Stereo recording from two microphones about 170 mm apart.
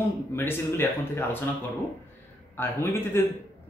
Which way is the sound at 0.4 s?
15° left (ahead or behind).